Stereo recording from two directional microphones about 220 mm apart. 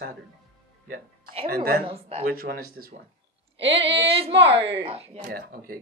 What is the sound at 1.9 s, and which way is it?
Speech, 25° right (ahead or behind).